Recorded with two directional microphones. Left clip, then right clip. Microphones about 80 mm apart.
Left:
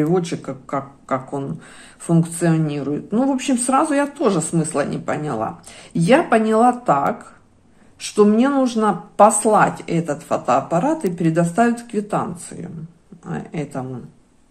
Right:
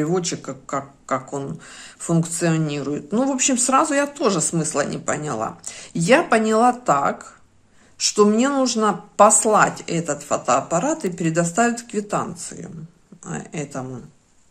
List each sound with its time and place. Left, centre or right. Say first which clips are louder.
0.0 s speech: left 3 dB; right
2.0 s a woman's voice: left 2 dB; right